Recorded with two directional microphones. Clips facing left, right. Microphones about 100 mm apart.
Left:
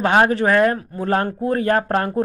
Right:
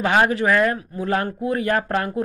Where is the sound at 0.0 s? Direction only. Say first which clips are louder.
Left 2 dB; 35° left (ahead or behind).